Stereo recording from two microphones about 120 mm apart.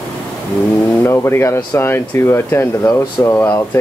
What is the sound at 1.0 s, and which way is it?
Speech, 20° left (ahead or behind).